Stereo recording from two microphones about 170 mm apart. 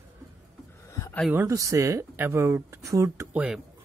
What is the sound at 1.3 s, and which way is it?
Speech, 20° right (ahead or behind).